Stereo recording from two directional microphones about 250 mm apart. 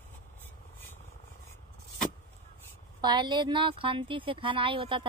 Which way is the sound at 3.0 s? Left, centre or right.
Centre.